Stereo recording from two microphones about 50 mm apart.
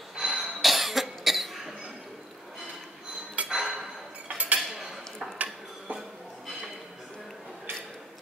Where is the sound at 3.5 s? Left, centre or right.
Centre.